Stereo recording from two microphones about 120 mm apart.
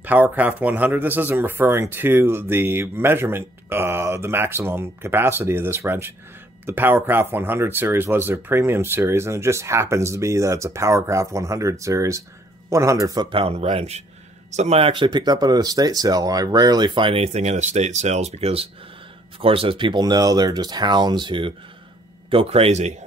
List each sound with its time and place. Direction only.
0.0 s speech: 15° right (ahead or behind); by 13.3 s 30° right (ahead or behind)
13.3 s speech: 50° right (ahead or behind)